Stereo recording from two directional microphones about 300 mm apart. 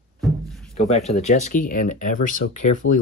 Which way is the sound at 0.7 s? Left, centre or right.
Left.